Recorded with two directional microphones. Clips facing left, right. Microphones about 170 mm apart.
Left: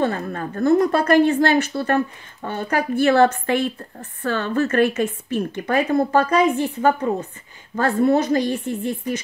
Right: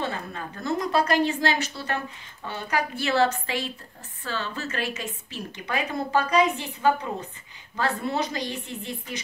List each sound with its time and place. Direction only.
0.0 s speech: 50° left (ahead or behind)